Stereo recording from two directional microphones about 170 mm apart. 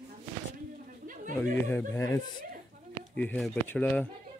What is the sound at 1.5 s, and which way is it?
Speech, 15° left (ahead or behind).